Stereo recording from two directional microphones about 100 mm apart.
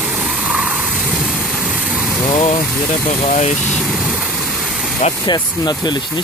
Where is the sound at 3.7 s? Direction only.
Centre (ahead or behind).